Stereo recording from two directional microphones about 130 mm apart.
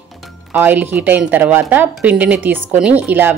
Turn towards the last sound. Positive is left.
turn(degrees=-15)  # may be behind; listen again after turning